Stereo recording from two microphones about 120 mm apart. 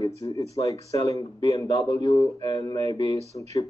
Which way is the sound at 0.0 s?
30° left (ahead or behind).